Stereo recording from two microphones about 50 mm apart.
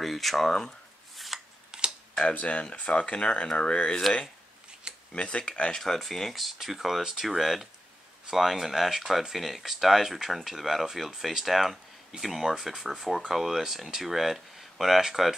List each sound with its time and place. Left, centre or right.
0.0 s speech: centre
1.1 s shuffling cards: centre
1.7 s camera: centre
2.3 s speech: left
5.1 s speech: left
5.8 s speech: centre